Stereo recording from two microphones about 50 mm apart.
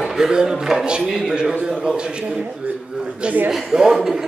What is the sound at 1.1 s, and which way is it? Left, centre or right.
Speech, centre.